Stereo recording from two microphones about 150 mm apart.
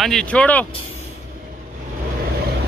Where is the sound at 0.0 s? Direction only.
5° left (ahead or behind).